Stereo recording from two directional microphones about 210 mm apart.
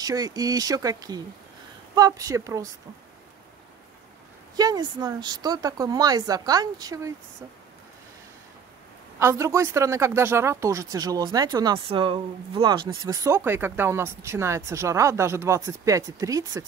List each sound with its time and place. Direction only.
0.0 s speech: 15° right (ahead or behind)
4.6 s speech: 20° right (ahead or behind)
9.2 s speech: 15° right (ahead or behind)